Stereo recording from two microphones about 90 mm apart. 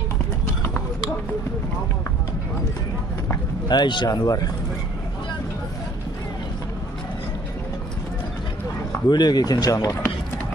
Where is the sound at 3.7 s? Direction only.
55° left (ahead or behind).